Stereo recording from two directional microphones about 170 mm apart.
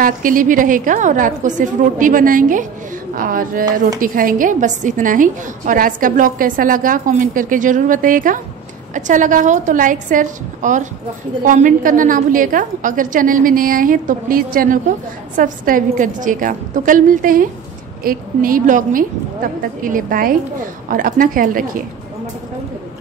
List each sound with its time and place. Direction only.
0.0 s a woman's voice: 55° right (ahead or behind)